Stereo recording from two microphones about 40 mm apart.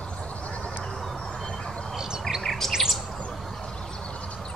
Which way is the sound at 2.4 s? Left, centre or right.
Centre.